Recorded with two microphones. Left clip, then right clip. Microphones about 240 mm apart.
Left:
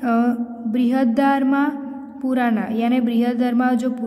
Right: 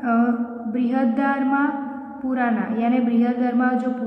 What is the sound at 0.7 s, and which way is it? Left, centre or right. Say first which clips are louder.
Speech: left 3 dB; left.